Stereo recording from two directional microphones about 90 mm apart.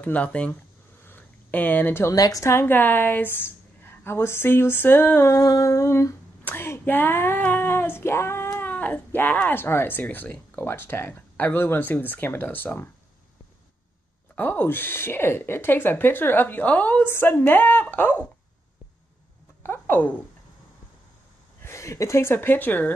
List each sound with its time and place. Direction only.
0.0 s speech: 15° left (ahead or behind)
1.0 s a sound: 20° left (ahead or behind)
2.1 s humming: 40° left (ahead or behind)
2.6 s speech: 20° left (ahead or behind)
5.3 s humming: 35° left (ahead or behind)
6.4 s speech: 25° left (ahead or behind)
6.8 s female singing: 20° left (ahead or behind)
10.6 s speech: 25° left (ahead or behind)
14.3 s speech: 20° left (ahead or behind)
19.6 s a sound: 25° left (ahead or behind)
21.6 s speech: 35° left (ahead or behind)